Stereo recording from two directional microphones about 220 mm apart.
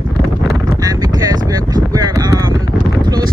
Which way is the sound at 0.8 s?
15° right (ahead or behind).